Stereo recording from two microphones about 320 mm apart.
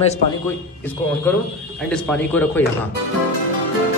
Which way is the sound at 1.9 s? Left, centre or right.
Centre.